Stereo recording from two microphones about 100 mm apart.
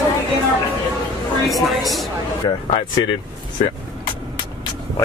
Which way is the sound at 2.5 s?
45° left (ahead or behind).